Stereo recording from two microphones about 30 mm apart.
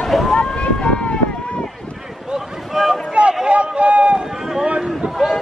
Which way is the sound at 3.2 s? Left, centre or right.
Right.